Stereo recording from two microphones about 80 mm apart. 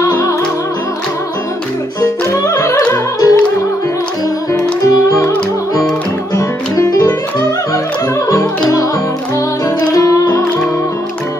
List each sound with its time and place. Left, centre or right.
0.0 s music: left
2.0 s music: left
4.5 s music: left
6.3 s music: left
9.9 s music: left